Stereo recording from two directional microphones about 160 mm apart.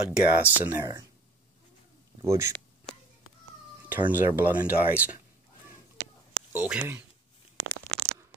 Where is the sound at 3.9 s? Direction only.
10° right (ahead or behind).